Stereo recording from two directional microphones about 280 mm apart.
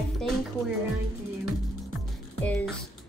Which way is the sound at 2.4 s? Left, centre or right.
Centre.